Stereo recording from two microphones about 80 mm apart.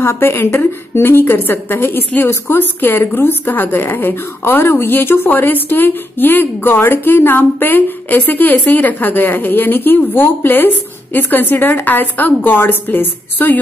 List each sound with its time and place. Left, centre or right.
0.0 s a woman's voice: left